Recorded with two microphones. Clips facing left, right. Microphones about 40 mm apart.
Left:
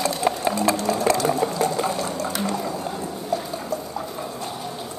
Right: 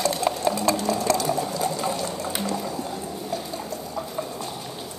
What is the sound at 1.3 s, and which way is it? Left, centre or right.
Sewing machine, left.